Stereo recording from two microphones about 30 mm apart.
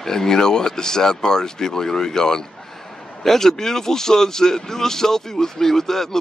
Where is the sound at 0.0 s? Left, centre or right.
Centre.